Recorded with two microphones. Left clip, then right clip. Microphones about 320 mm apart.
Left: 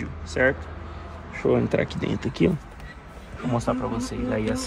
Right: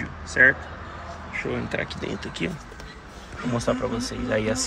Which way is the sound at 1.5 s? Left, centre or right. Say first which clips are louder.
Left 5 dB; centre.